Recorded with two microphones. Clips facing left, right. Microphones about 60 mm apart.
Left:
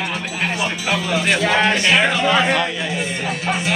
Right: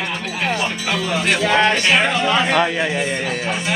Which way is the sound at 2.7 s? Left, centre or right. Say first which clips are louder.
Right 4 dB; right.